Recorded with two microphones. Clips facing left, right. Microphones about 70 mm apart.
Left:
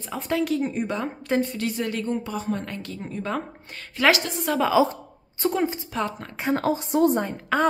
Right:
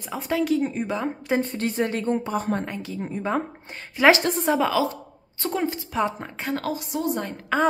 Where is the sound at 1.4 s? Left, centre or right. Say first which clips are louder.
Right 2 dB; right.